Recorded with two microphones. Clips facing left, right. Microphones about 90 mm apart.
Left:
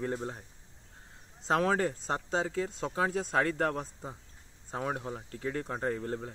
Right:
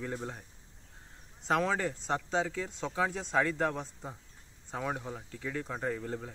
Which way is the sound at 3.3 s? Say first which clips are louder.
Left 1 dB; 55° left (ahead or behind).